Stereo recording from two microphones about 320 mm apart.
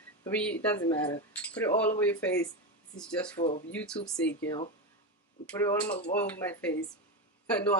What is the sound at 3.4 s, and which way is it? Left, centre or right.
Speech, centre.